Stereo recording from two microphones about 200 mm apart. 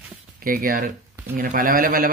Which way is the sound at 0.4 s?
45° right (ahead or behind).